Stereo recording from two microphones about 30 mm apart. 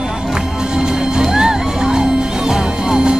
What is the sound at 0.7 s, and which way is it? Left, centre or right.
Music, right.